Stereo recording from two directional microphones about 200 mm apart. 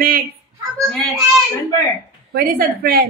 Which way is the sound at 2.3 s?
50° right (ahead or behind).